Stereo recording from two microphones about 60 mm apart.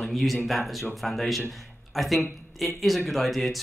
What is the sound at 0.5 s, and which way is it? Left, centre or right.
A man's voice, centre.